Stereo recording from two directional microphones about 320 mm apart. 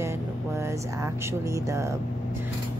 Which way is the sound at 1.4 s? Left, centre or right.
Centre.